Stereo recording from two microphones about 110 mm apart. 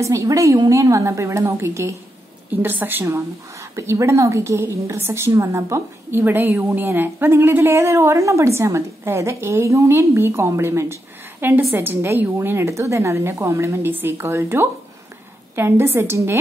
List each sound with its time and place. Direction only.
0.0 s a woman's voice: 30° right (ahead or behind)